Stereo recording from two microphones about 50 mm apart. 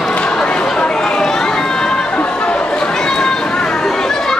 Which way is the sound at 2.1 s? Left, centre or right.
Left.